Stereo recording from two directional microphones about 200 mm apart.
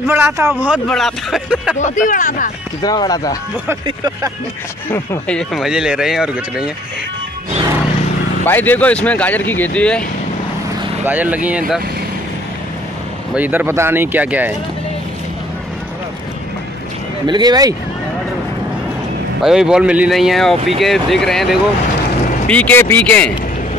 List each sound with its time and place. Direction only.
0.1 s speech: 10° right (ahead or behind)
1.8 s speech: 35° left (ahead or behind)
2.8 s speech: 20° left (ahead or behind)
3.8 s speech: 20° right (ahead or behind)
4.8 s speech: 10° left (ahead or behind)
5.5 s speech: centre (ahead or behind)
8.5 s speech: 10° left (ahead or behind)
11.1 s speech: 10° right (ahead or behind)
13.3 s speech: 10° right (ahead or behind)
17.3 s speech: 20° right (ahead or behind)
19.4 s speech: 5° right (ahead or behind)